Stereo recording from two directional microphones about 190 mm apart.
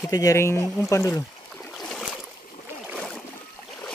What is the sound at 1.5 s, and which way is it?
Boat, 5° left (ahead or behind).